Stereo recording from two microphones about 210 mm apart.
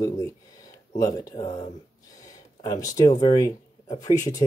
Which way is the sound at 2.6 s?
15° left (ahead or behind).